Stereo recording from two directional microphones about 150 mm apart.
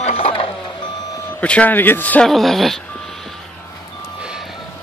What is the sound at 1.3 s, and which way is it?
Speech, 10° left (ahead or behind).